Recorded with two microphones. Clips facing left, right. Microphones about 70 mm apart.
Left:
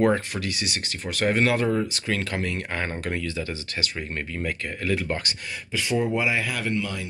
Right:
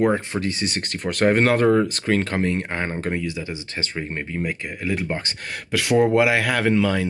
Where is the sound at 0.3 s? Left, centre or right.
Right; by 3.5 s centre.